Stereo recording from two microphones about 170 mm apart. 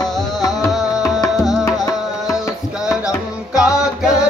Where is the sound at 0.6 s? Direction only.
20° left (ahead or behind).